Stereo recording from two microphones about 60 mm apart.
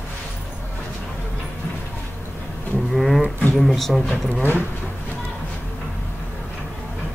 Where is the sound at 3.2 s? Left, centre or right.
Left.